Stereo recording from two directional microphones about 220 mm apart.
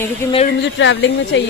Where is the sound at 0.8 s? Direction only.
55° left (ahead or behind).